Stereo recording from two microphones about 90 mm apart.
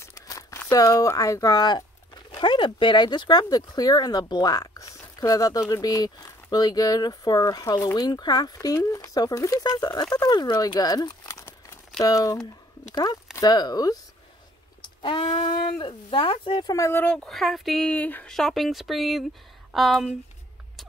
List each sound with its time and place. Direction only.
0.0 s crumpling: 35° left (ahead or behind)
0.7 s speech: 40° left (ahead or behind)
14.8 s speech: 65° left (ahead or behind)
16.8 s speech: 25° left (ahead or behind)
17.1 s speech: 5° left (ahead or behind)
17.8 s speech: 15° left (ahead or behind)
18.3 s speech: centre (ahead or behind)